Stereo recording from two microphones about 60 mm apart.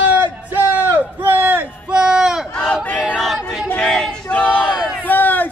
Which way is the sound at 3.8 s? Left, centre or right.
Centre.